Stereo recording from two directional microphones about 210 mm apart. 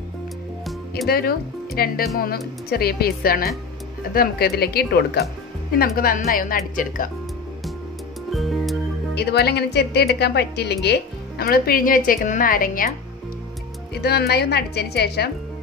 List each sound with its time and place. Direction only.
1.0 s a woman's voice: 45° left (ahead or behind)
8.3 s music: centre (ahead or behind)
9.1 s a woman's voice: 50° left (ahead or behind)
14.0 s a woman's voice: 50° left (ahead or behind)